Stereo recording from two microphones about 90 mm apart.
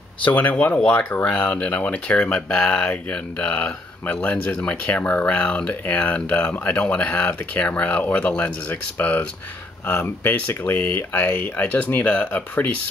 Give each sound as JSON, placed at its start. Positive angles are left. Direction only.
{"t": 0.2, "sound": "speech", "side_deg": 15}